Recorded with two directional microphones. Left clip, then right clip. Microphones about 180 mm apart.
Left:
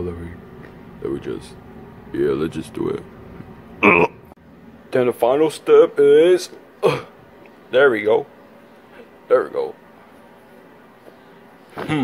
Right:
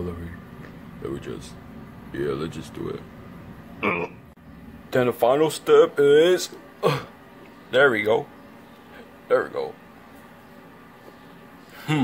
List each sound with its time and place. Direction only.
1.0 s speech: 15° left (ahead or behind); by 4.1 s 30° left (ahead or behind)
4.9 s speech: 5° left (ahead or behind)
9.3 s speech: 10° left (ahead or behind)